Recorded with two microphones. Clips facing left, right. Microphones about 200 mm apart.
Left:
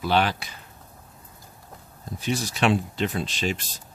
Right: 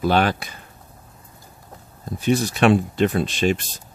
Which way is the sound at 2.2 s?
55° right (ahead or behind).